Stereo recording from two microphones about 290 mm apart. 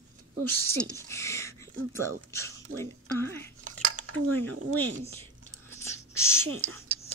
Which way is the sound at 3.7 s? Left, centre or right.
Right.